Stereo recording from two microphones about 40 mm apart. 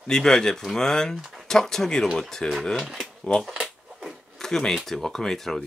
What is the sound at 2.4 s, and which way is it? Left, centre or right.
Speech, left.